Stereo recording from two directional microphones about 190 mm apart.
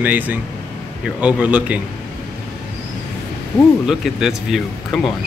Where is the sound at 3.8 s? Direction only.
Centre (ahead or behind).